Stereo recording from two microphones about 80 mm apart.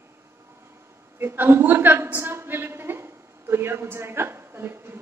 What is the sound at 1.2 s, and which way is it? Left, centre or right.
A woman's voice, right.